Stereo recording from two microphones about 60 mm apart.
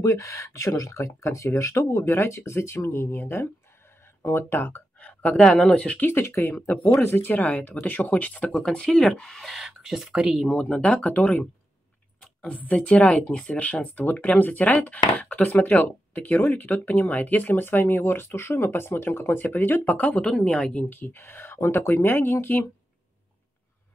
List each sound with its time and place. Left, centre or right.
0.0 s speech: left
5.4 s speech: centre
5.7 s speech: left
6.0 s speech: left
8.6 s speech: centre
9.5 s speech: centre
10.5 s speech: centre; by 19.9 s left
19.9 s speech: left
20.9 s speech: left